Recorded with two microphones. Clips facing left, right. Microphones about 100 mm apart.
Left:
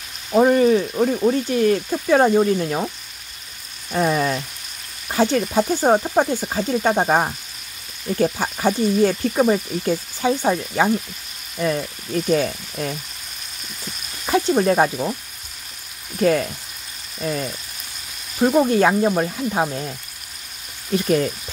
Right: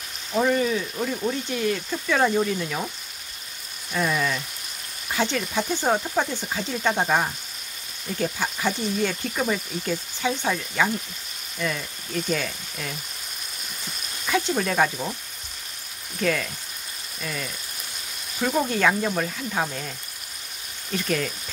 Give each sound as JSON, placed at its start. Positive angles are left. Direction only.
{"t": 0.3, "sound": "speech", "side_deg": 45}
{"t": 3.9, "sound": "speech", "side_deg": 40}
{"t": 14.2, "sound": "speech", "side_deg": 35}
{"t": 16.2, "sound": "speech", "side_deg": 35}
{"t": 18.6, "sound": "speech", "side_deg": 30}
{"t": 20.9, "sound": "speech", "side_deg": 35}